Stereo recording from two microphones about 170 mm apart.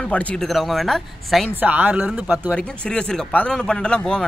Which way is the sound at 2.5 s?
5° left (ahead or behind).